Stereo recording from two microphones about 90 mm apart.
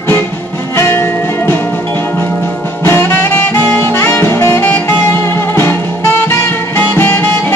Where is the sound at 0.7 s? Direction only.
30° left (ahead or behind).